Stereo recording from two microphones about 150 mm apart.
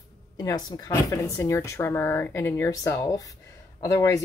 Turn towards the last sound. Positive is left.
turn(degrees=20)  # may be behind; listen again after turning